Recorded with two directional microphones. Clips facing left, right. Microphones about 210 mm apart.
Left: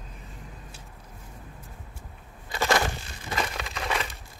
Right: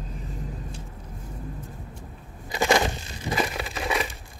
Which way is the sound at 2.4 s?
15° right (ahead or behind).